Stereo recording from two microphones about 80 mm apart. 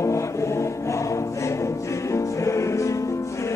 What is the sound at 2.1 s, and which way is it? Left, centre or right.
Music, left.